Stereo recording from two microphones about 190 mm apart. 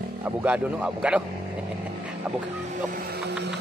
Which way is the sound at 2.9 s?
50° right (ahead or behind).